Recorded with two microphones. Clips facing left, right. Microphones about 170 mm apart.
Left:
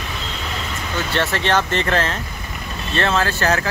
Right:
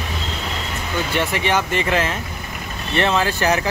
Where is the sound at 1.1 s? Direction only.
10° right (ahead or behind).